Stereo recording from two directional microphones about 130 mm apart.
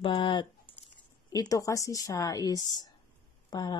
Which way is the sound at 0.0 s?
40° left (ahead or behind).